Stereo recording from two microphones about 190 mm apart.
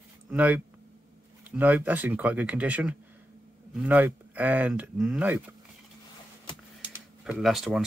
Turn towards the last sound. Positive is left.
turn(degrees=0)  # may be behind; listen again after turning